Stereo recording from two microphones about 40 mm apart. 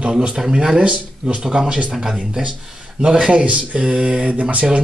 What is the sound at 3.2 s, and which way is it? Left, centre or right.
Speech, right.